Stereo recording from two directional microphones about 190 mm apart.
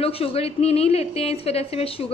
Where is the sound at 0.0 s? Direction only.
30° left (ahead or behind).